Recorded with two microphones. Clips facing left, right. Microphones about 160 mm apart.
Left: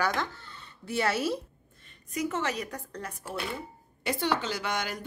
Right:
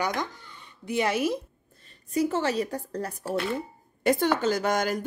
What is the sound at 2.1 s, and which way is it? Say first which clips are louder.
A woman's voice: right 6 dB; 30° right (ahead or behind).